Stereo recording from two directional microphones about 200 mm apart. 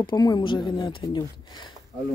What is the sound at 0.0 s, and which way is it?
A woman's voice, 20° left (ahead or behind).